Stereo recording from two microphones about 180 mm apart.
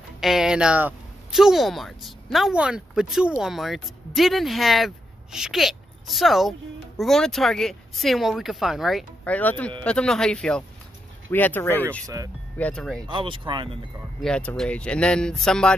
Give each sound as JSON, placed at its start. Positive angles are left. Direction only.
{"t": 0.2, "sound": "speech", "side_deg": 0}
{"t": 13.1, "sound": "speech", "side_deg": -30}
{"t": 14.2, "sound": "speech", "side_deg": 5}